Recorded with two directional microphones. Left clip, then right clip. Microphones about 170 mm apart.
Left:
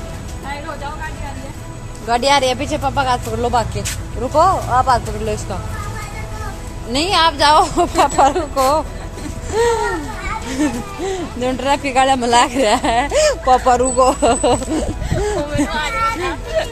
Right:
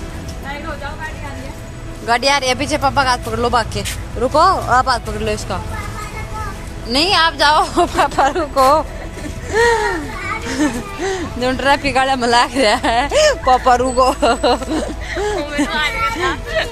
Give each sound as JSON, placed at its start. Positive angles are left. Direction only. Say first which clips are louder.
{"t": 2.0, "sound": "speech", "louder": "even", "side_deg": 0}
{"t": 4.2, "sound": "speech", "louder": "right 1 dB", "side_deg": -20}
{"t": 5.2, "sound": "speech", "louder": "right 2 dB", "side_deg": -5}
{"t": 6.9, "sound": "speech", "louder": "right 1 dB", "side_deg": 0}
{"t": 15.1, "sound": "a sound", "louder": "even", "side_deg": 10}
{"t": 16.6, "sound": "speech", "louder": "left 1 dB", "side_deg": 55}